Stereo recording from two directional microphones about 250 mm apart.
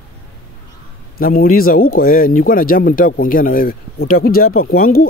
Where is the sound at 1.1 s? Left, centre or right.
Left.